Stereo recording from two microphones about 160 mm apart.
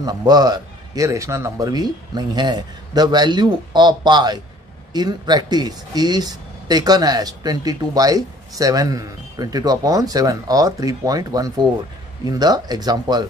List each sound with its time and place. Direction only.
0.0 s speech: 25° right (ahead or behind)